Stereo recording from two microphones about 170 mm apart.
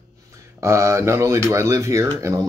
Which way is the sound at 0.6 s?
15° right (ahead or behind).